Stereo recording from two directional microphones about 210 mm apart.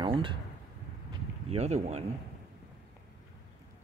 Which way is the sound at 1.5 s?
30° right (ahead or behind).